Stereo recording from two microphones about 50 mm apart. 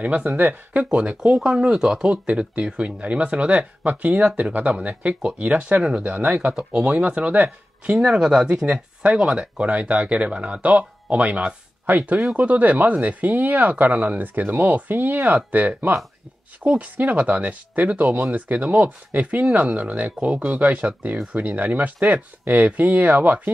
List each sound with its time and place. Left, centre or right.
0.0 s speech: right
0.4 s speech: right
0.9 s speech: right
1.4 s speech: centre
2.2 s speech: right
5.8 s speech: centre
6.0 s speech: right
6.5 s speech: centre
7.9 s speech: centre
9.6 s speech: right